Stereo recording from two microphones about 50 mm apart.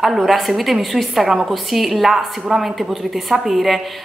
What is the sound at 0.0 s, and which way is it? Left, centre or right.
A woman's voice, centre.